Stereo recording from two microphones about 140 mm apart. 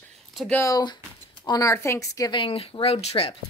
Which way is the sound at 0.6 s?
30° left (ahead or behind).